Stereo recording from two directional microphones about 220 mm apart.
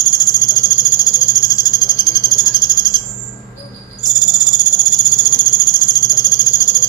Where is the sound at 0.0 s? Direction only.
15° left (ahead or behind).